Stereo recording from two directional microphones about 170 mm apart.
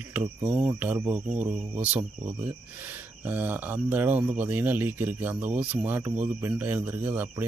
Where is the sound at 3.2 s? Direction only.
10° right (ahead or behind).